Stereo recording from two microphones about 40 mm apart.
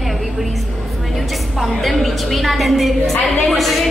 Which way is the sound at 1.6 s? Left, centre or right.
Centre.